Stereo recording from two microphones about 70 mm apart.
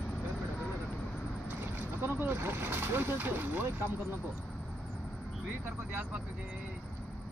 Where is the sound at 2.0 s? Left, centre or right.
Right.